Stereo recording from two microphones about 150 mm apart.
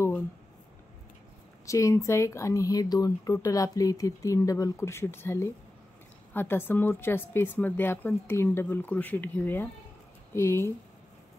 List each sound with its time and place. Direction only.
1.7 s speech: 20° left (ahead or behind)